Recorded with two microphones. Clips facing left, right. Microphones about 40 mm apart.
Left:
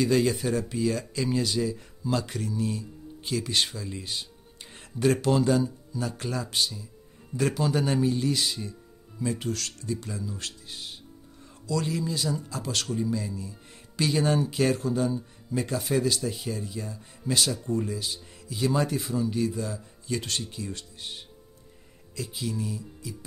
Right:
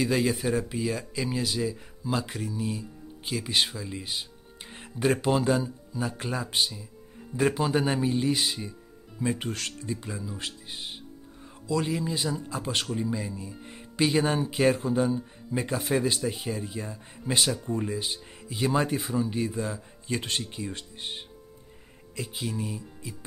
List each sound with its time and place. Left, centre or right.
0.0 s speech: centre; by 23.1 s right